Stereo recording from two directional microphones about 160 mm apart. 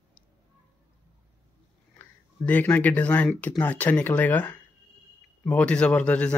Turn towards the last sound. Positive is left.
turn(degrees=10)  # may be behind; listen again after turning